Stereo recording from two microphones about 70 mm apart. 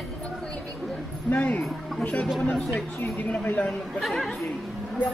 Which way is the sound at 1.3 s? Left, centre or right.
Centre.